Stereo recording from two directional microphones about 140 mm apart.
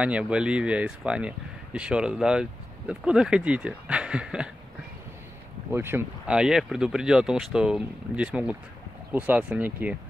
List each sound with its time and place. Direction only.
0.0 s speech: 5° right (ahead or behind)
5.7 s speech: 15° right (ahead or behind)
6.3 s speech: 5° right (ahead or behind)